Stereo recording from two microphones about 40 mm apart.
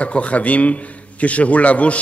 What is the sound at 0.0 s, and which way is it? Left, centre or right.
A man's voice, left.